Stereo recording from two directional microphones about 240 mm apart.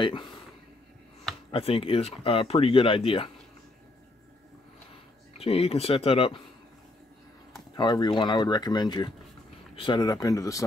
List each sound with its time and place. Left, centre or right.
0.0 s speech: centre
1.5 s speech: left
5.4 s speech: left
7.7 s speech: centre